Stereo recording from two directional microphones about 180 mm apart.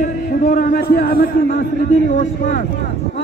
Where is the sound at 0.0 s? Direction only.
45° left (ahead or behind).